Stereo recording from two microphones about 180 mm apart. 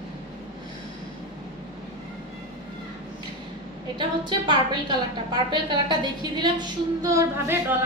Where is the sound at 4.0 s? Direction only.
25° right (ahead or behind).